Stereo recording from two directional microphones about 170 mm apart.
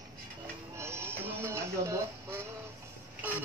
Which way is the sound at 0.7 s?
15° right (ahead or behind).